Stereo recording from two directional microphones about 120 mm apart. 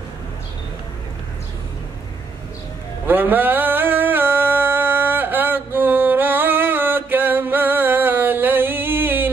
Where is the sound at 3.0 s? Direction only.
15° right (ahead or behind).